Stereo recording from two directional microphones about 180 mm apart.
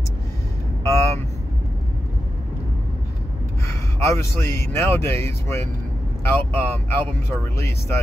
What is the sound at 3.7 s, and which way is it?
A man's voice, 15° left (ahead or behind).